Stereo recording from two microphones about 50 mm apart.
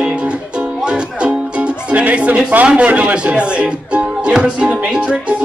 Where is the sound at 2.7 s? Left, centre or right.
Right.